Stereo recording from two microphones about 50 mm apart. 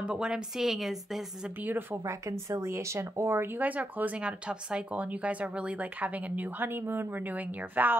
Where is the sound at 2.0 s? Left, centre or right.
Right.